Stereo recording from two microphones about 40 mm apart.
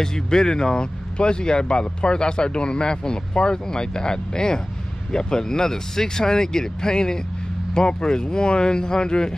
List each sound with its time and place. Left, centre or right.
0.0 s speech: centre